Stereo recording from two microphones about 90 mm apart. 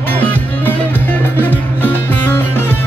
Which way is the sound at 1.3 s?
20° left (ahead or behind).